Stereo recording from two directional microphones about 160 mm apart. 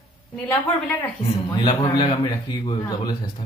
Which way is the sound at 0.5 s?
10° left (ahead or behind).